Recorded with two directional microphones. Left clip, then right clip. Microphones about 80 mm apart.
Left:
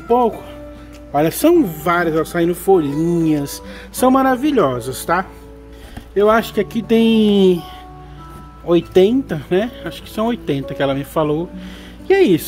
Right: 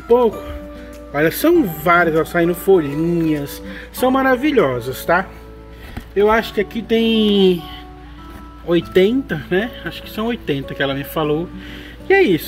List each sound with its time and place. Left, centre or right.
0.1 s speech: left
1.1 s speech: left
1.6 s speech: left
2.9 s speech: left
3.4 s speech: left
4.3 s speech: left
4.9 s speech: left
6.1 s speech: left
6.9 s speech: left
8.6 s speech: left
12.1 s speech: left